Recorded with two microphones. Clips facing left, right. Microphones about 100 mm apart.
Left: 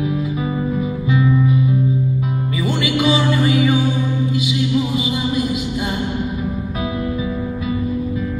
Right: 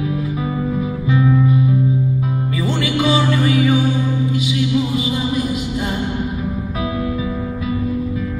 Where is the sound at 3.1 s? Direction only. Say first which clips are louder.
Even; 20° left (ahead or behind).